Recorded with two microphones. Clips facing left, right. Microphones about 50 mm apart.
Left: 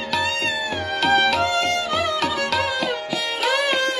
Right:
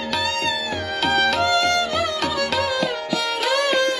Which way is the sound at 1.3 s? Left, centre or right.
Centre.